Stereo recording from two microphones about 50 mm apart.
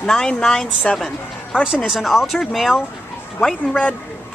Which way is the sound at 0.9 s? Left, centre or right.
Centre.